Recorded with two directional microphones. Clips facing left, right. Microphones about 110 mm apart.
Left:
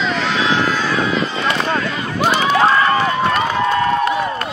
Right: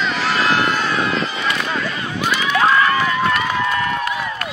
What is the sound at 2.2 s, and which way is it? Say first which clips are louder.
Run: left 4 dB; 30° left (ahead or behind).